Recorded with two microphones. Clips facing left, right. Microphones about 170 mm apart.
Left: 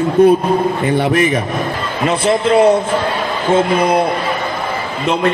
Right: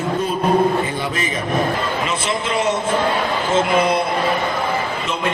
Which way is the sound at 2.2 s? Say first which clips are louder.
Left 13 dB; 60° left (ahead or behind).